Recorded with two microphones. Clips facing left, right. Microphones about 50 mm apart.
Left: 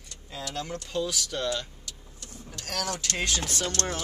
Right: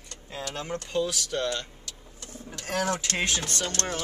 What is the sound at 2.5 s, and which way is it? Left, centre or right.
Speech, right.